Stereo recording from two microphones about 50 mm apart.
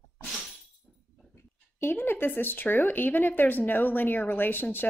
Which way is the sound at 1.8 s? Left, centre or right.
Left.